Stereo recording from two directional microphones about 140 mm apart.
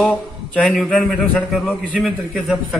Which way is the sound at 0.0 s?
10° left (ahead or behind).